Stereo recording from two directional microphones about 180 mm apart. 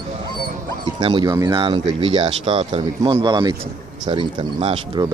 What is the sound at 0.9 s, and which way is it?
Speech, 25° right (ahead or behind).